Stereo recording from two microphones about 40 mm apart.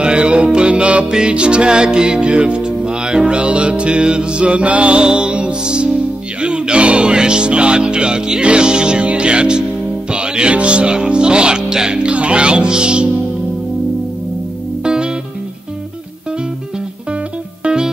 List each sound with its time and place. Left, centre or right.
0.0 s music: right
10.1 s speech: right
14.8 s music: right